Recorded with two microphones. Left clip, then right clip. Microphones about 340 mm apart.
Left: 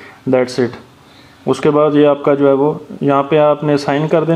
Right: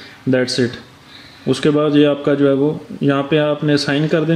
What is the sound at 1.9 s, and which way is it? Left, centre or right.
A man's voice, centre.